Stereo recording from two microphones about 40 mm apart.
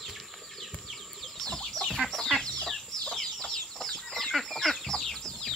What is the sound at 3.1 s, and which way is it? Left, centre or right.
Chicken, centre.